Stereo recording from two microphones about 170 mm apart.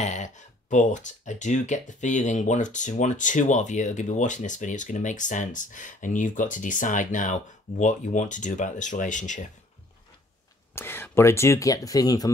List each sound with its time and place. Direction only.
0.0 s speech: 45° left (ahead or behind)
10.7 s speech: 15° left (ahead or behind)